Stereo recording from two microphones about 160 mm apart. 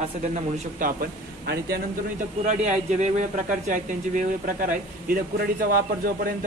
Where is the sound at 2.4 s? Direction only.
50° right (ahead or behind); by 5.8 s 65° right (ahead or behind).